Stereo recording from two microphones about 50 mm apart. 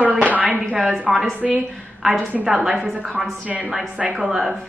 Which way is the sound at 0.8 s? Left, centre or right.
Right.